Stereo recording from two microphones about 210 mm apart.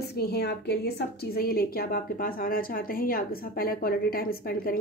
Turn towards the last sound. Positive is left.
turn(degrees=45)  # may be behind; listen again after turning